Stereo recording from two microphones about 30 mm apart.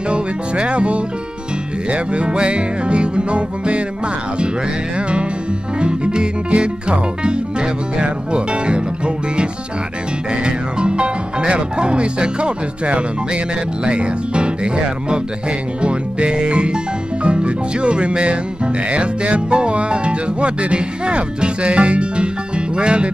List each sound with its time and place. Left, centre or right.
0.1 s speech: right
5.8 s speech: right
10.4 s music: right
13.8 s speech: right